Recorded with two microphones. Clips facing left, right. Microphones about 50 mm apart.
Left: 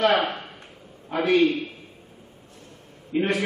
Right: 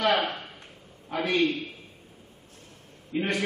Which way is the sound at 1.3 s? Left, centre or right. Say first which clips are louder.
Left 6 dB; centre.